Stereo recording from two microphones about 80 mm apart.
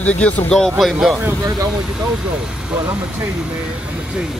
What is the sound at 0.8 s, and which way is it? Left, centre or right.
Speech, centre.